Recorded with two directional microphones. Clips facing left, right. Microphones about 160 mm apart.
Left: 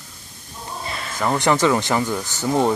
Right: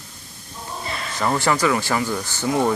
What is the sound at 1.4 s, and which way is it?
Speech, 20° left (ahead or behind).